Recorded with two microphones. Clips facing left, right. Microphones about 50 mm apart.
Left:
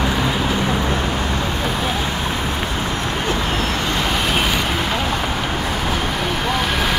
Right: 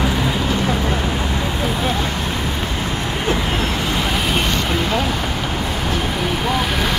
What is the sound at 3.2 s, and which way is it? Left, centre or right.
Vehicle, right.